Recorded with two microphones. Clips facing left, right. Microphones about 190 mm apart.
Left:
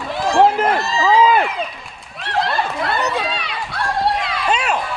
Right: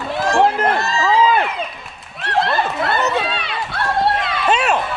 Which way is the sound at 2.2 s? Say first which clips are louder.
Right 2 dB; centre (ahead or behind).